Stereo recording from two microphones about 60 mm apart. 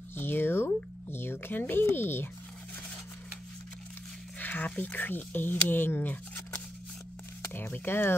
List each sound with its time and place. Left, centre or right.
0.1 s a sound: left
1.1 s speech: left
4.4 s speech: left
7.5 s speech: left